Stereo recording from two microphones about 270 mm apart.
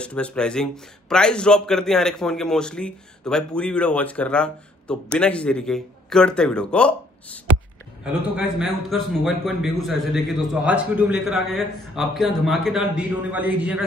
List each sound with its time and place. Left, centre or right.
0.0 s a man's voice: centre